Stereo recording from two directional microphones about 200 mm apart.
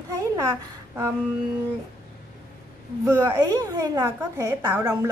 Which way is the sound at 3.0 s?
15° right (ahead or behind).